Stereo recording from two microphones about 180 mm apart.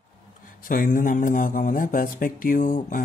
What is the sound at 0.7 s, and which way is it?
Speech, 50° left (ahead or behind).